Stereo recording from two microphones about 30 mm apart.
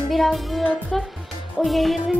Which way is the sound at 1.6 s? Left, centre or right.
Centre.